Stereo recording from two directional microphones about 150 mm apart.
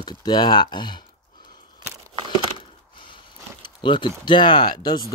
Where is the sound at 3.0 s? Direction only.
35° left (ahead or behind).